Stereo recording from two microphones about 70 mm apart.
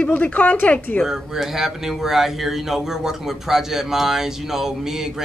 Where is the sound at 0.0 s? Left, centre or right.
Left.